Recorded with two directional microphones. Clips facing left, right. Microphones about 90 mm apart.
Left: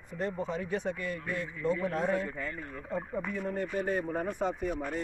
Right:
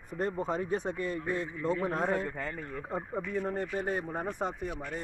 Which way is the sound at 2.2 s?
60° right (ahead or behind).